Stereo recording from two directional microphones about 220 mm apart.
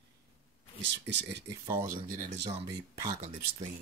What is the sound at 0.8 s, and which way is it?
Speech, 55° right (ahead or behind).